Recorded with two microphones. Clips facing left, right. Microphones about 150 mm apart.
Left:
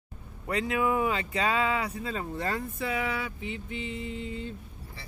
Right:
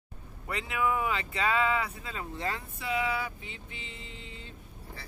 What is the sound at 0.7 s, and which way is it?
Speech, 30° left (ahead or behind).